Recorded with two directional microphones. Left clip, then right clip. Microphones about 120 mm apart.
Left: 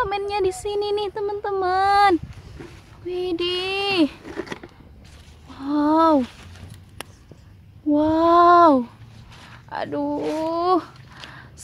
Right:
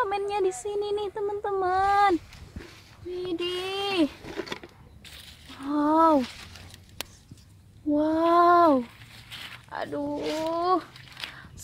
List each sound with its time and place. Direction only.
0.0 s speech: centre (ahead or behind)
0.7 s speech: 20° left (ahead or behind)
3.1 s speech: 30° left (ahead or behind)
4.3 s a sound: 60° left (ahead or behind)
5.5 s speech: 10° left (ahead or behind)
7.9 s speech: 15° left (ahead or behind)
9.7 s speech: 20° left (ahead or behind)
11.2 s a sound: 5° left (ahead or behind)